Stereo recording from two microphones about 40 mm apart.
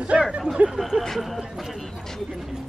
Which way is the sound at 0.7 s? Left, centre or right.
Centre.